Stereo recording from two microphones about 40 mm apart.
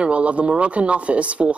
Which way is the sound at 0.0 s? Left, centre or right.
Right.